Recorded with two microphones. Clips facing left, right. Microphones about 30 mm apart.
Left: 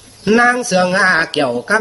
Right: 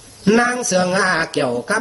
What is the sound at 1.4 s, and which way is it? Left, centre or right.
Mantra, left.